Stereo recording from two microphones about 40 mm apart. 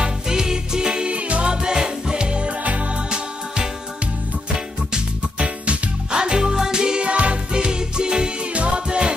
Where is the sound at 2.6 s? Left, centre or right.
Right.